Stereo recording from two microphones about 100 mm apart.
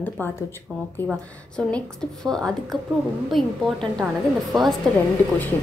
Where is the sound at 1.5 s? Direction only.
10° left (ahead or behind).